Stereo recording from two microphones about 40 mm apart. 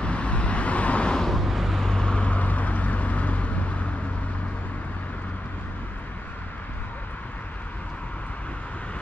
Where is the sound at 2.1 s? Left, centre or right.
Left.